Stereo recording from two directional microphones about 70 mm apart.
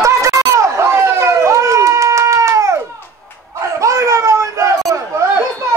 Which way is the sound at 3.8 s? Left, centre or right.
Right.